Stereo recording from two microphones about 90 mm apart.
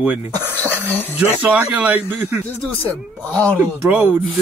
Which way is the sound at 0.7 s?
20° left (ahead or behind).